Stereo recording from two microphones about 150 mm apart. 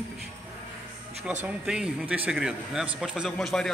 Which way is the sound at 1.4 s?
5° right (ahead or behind).